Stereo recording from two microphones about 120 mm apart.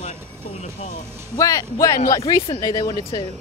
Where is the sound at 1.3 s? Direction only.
25° left (ahead or behind).